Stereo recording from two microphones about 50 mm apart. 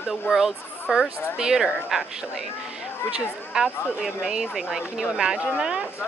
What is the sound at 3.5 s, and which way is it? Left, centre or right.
Speech, centre.